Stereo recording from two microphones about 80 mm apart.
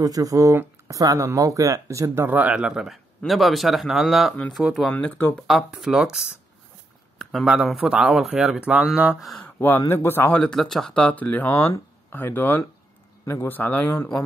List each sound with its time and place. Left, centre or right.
0.0 s speech: right
2.2 s speech: right
4.9 s speech: left
5.7 s speech: centre
7.4 s speech: centre
9.4 s speech: left
10.4 s speech: centre; by 12.6 s left
13.2 s a man's voice: left
13.5 s speech: left